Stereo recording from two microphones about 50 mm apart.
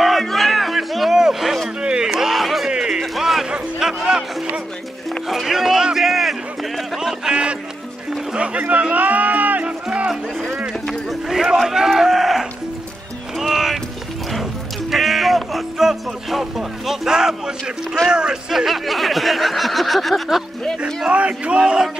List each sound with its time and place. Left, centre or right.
0.0 s music: centre
1.8 s crowd: centre
2.7 s music: centre
5.3 s music: centre
7.0 s a sound: centre
8.3 s speech: right
8.9 s music: right
10.0 s music: centre
10.9 s livestock: centre
13.4 s music: centre
14.9 s speech: centre
18.5 s snicker: centre
21.1 s speech: right
21.5 s speech: centre